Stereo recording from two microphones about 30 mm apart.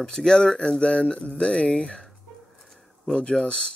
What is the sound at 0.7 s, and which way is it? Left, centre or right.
Speech, left.